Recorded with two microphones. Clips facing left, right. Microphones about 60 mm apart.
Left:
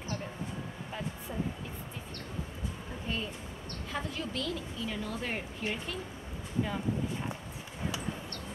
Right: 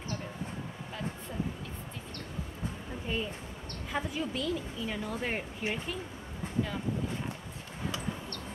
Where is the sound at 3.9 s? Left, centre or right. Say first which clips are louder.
Right 3 dB; centre.